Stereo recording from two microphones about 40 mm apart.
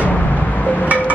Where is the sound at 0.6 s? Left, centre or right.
Left.